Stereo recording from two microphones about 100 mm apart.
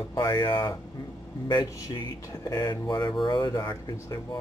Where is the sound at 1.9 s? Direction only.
40° left (ahead or behind).